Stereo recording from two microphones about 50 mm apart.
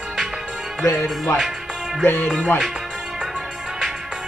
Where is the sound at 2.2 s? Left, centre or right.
Left.